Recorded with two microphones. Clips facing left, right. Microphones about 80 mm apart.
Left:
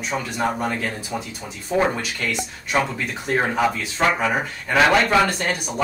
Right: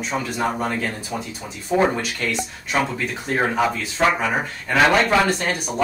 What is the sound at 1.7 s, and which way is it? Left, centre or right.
Speech, centre.